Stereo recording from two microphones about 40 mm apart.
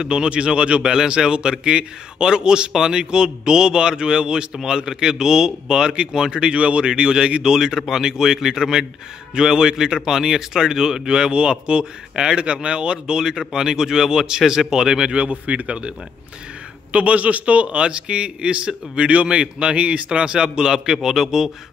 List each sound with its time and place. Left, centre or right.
0.0 s speech: right
7.5 s a man's voice: centre; by 15.9 s right
16.9 s speech: right; by 21.5 s centre